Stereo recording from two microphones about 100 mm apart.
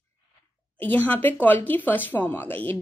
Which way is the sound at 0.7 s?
20° left (ahead or behind).